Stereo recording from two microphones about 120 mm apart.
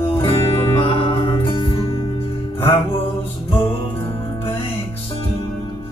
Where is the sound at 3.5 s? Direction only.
50° left (ahead or behind).